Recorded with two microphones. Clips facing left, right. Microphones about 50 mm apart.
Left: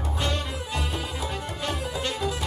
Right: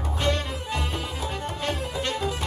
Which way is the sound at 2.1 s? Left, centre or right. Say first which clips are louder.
Right 1 dB; right.